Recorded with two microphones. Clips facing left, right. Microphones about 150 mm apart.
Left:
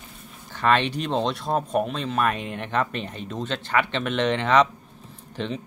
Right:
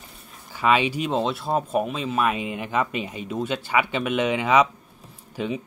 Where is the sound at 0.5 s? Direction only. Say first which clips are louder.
Right 1 dB; 10° right (ahead or behind).